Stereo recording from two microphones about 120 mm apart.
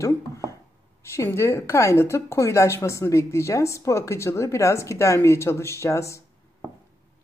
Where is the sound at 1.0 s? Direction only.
20° left (ahead or behind).